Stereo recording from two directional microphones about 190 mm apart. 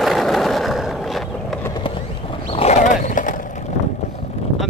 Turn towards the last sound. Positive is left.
turn(degrees=40)  # may be behind; listen again after turning